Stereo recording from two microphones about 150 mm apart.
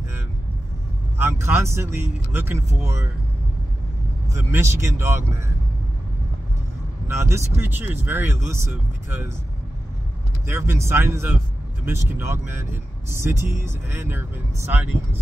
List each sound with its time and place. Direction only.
1.1 s speech: 15° right (ahead or behind)
4.3 s speech: 15° right (ahead or behind)
7.1 s speech: 20° right (ahead or behind)
10.4 s speech: 15° right (ahead or behind)